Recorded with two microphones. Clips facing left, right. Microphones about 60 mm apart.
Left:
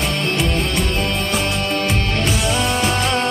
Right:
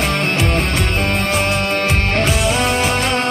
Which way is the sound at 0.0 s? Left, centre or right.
Right.